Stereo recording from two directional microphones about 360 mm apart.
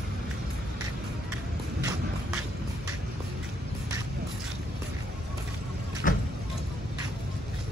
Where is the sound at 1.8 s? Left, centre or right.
Centre.